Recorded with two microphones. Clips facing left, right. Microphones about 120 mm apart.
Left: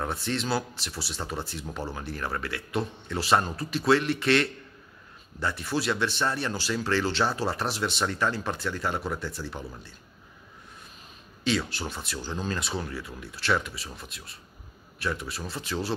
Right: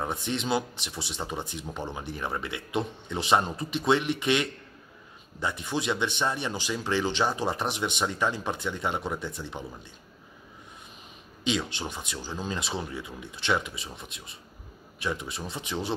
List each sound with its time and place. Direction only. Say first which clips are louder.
0.0 s speech: even; 20° right (ahead or behind)
11.4 s speech: left 1 dB; 20° right (ahead or behind)
12.5 s speech: even; 25° right (ahead or behind)